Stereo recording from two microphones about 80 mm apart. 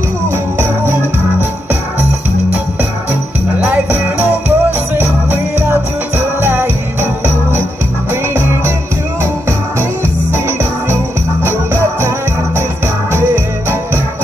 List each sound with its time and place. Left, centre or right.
0.3 s music: right
3.6 s music: right
8.1 s music: right
10.3 s music: right